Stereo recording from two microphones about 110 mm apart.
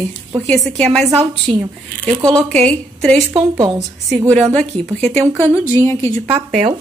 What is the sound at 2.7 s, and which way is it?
Speech, 10° left (ahead or behind).